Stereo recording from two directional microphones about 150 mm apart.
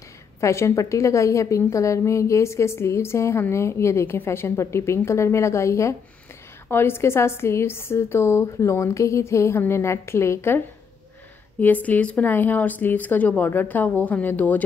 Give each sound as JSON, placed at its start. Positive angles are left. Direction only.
{"t": 0.4, "sound": "a woman's voice", "side_deg": 20}
{"t": 11.6, "sound": "a woman's voice", "side_deg": 10}